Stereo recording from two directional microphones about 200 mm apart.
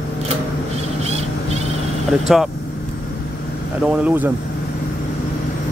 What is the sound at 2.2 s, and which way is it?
Speech, centre (ahead or behind).